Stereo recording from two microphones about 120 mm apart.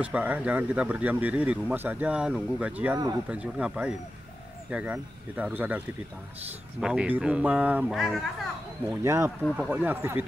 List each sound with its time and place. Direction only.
0.0 s speech: 10° right (ahead or behind)
6.8 s speech: 5° right (ahead or behind)
7.9 s speech: centre (ahead or behind)
9.0 s speech: 25° right (ahead or behind)